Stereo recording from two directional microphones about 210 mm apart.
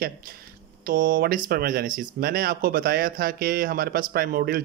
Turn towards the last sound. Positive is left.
turn(degrees=-45)  # may be behind; listen again after turning